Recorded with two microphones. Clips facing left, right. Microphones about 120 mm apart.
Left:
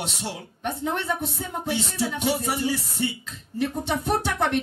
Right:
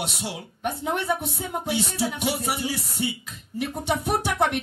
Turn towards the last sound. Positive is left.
turn(degrees=-15)  # may be behind; listen again after turning